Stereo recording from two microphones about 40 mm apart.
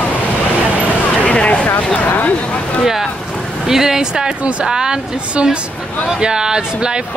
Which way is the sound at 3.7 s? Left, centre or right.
Centre.